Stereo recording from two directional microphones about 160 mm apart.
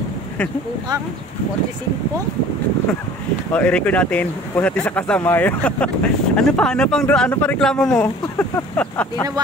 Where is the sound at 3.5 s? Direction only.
10° left (ahead or behind).